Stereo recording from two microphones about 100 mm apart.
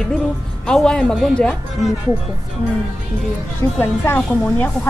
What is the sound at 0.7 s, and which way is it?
A woman's voice, 10° left (ahead or behind).